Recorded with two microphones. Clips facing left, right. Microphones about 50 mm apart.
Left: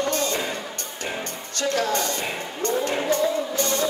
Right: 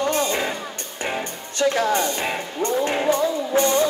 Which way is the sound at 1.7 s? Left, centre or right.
Right.